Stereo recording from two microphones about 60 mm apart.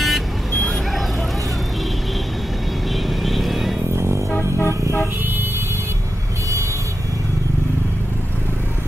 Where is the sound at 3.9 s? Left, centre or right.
Right.